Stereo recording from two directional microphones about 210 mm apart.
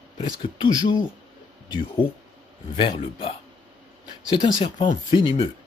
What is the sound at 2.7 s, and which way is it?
Speech, 25° left (ahead or behind).